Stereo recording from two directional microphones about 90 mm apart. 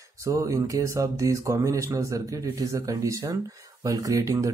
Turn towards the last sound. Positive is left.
turn(degrees=-35)  # may be behind; listen again after turning